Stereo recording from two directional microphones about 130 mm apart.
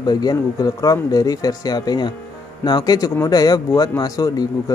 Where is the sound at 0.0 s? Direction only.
30° left (ahead or behind).